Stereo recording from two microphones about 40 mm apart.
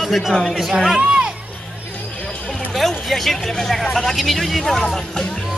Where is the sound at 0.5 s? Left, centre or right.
Centre.